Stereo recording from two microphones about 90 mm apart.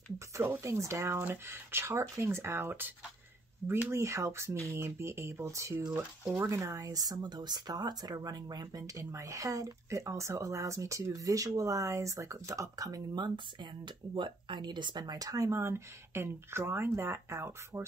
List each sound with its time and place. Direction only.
0.4 s speech: 30° right (ahead or behind)